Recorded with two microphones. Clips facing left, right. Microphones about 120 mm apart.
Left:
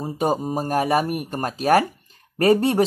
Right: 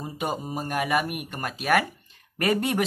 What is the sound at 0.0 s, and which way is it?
A man's voice, 40° left (ahead or behind).